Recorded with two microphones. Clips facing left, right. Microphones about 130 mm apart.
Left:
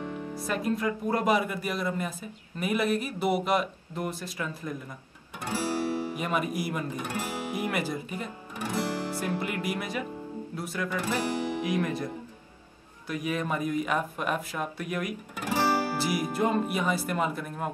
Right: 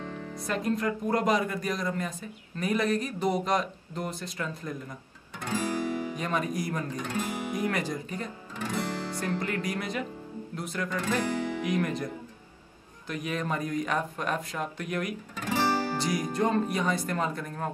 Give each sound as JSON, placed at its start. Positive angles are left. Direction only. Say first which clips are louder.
{"t": 0.0, "sound": "music", "louder": "left 3 dB", "side_deg": 15}
{"t": 0.3, "sound": "speech", "louder": "even", "side_deg": 5}
{"t": 5.5, "sound": "guitar", "louder": "left 1 dB", "side_deg": -15}
{"t": 6.1, "sound": "speech", "louder": "left 1 dB", "side_deg": 10}
{"t": 7.2, "sound": "speech", "louder": "right 3 dB", "side_deg": -20}
{"t": 7.5, "sound": "speech", "louder": "even", "side_deg": 10}
{"t": 13.1, "sound": "speech", "louder": "left 1 dB", "side_deg": 5}